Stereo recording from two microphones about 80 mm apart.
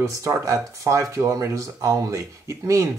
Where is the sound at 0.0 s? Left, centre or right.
Right.